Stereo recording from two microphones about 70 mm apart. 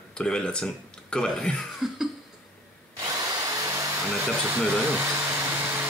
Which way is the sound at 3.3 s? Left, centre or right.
Right.